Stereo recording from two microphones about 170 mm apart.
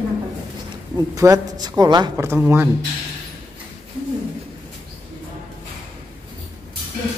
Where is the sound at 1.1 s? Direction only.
20° right (ahead or behind).